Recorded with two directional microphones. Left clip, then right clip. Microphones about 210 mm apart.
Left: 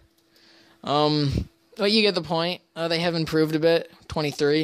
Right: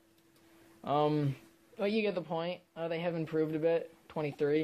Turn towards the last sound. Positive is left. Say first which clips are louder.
# left 9 dB
turn(degrees=45)  # may be behind; listen again after turning